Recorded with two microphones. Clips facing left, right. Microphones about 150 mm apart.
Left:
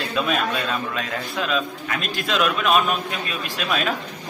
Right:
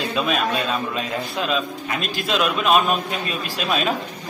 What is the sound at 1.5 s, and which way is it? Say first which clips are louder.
A man's voice: right 1 dB; 25° right (ahead or behind).